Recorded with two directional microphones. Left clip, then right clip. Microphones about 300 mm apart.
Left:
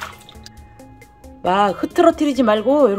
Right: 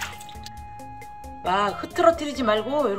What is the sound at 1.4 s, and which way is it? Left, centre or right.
Speech, left.